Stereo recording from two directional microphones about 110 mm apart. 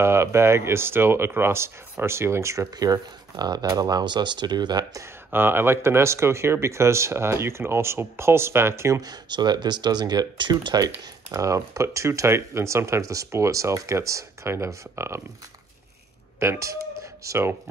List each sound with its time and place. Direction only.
0.0 s speech: 25° right (ahead or behind); by 5.0 s 40° right (ahead or behind)
5.0 s speech: 20° right (ahead or behind)
9.1 s speech: 40° right (ahead or behind); by 15.2 s 25° right (ahead or behind)
16.3 s speech: 25° right (ahead or behind)